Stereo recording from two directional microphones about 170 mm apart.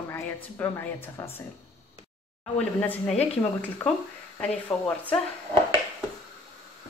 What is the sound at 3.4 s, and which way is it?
Speech, 15° left (ahead or behind).